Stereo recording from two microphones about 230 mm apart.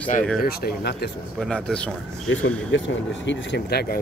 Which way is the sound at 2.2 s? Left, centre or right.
Left.